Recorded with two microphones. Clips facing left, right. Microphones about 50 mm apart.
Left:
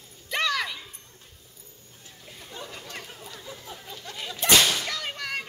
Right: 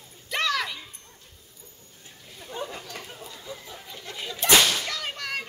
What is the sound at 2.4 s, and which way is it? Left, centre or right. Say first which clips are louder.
Chatter: right 6 dB; centre.